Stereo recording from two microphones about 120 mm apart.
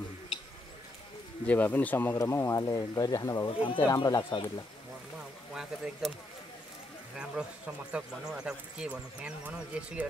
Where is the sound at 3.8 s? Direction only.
30° left (ahead or behind).